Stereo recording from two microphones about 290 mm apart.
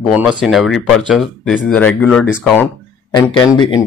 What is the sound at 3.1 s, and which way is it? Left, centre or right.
Speech, centre.